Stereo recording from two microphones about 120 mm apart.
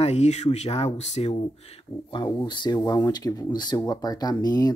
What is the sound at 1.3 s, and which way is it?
Speech, 40° left (ahead or behind).